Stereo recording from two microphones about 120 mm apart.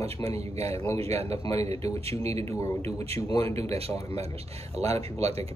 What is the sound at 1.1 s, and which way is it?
Speech, 25° left (ahead or behind).